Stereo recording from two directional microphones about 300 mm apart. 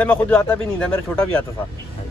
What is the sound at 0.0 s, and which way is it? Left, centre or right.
Speech, centre.